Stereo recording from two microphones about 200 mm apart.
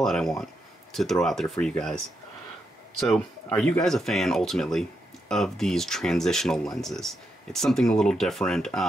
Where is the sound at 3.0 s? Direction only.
5° left (ahead or behind).